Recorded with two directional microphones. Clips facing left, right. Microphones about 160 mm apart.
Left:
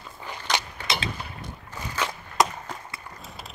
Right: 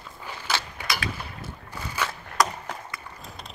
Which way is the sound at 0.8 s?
10° right (ahead or behind).